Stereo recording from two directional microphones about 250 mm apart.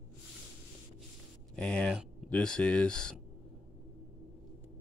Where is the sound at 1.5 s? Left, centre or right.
Centre.